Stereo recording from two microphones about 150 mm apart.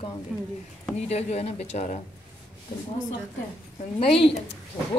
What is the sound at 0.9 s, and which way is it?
A woman's voice, 45° left (ahead or behind).